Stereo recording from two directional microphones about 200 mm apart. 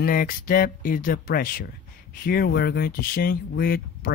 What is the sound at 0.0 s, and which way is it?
Speech, 45° left (ahead or behind).